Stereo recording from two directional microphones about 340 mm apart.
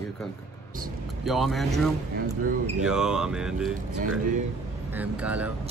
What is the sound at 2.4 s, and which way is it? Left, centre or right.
Speech, right.